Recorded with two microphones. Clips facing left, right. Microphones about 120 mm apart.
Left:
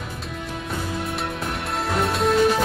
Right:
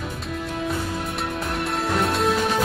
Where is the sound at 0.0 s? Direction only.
Centre (ahead or behind).